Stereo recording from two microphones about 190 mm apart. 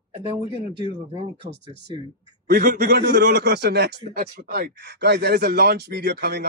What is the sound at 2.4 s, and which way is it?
A man's voice, 50° right (ahead or behind).